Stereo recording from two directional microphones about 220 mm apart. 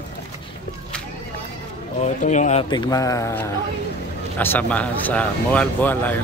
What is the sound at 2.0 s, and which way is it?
Speech, 35° left (ahead or behind).